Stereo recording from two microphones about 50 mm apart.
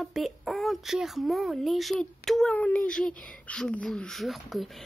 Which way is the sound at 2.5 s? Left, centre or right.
Left.